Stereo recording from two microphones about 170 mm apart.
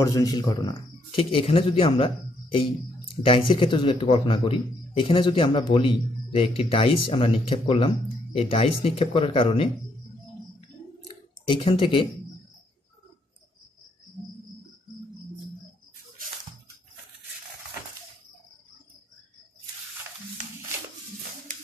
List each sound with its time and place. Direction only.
0.0 s speech: 20° left (ahead or behind)
11.5 s speech: 30° left (ahead or behind)